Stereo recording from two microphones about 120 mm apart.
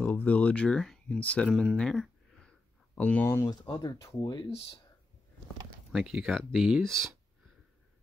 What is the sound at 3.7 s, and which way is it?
Speech, 35° left (ahead or behind).